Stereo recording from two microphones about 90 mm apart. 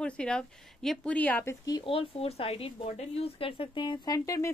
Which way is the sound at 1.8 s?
90° left.